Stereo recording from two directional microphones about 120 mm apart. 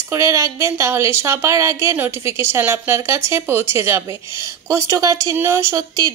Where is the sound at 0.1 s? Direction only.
25° right (ahead or behind).